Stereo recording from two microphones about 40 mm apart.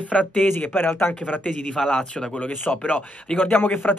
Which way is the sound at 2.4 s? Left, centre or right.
Left.